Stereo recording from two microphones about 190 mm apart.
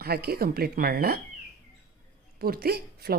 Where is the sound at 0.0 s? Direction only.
55° right (ahead or behind).